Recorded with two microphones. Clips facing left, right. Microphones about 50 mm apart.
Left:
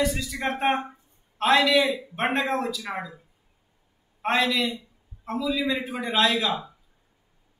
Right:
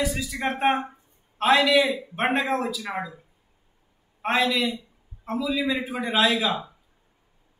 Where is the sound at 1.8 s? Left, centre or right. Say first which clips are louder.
Right 1 dB; right.